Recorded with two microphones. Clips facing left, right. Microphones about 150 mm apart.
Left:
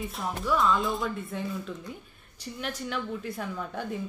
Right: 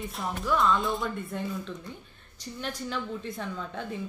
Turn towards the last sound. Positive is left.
turn(degrees=10)  # may be behind; listen again after turning